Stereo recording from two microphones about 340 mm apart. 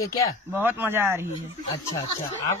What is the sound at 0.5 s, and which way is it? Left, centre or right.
Speech, centre.